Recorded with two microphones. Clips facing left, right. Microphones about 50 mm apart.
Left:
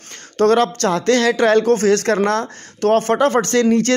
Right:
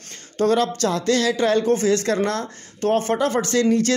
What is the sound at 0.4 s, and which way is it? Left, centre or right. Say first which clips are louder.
Speech: left 5 dB; left.